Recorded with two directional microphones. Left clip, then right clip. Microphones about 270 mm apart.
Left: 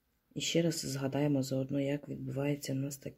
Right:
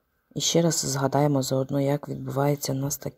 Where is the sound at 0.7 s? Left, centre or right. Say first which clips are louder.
Right 11 dB; right.